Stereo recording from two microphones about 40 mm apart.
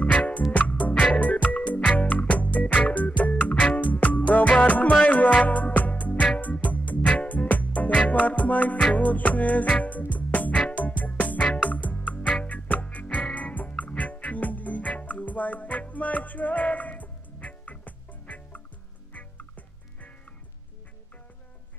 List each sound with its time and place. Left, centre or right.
0.0 s music: left
11.3 s music: left
11.7 s music: left
12.4 s frog: left
12.9 s music: left